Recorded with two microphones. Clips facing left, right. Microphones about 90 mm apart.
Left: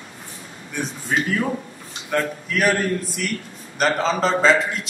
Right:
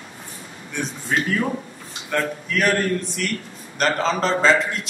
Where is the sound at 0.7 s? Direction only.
5° left (ahead or behind).